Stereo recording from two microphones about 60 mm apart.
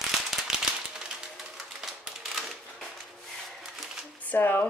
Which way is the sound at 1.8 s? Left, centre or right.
Centre.